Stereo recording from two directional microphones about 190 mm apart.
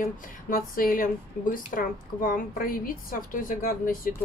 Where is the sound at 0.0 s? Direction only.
45° left (ahead or behind).